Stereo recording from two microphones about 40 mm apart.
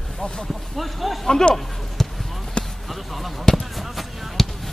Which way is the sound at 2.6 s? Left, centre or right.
Left.